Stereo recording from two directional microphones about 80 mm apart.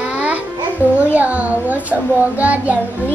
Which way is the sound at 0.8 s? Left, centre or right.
Left.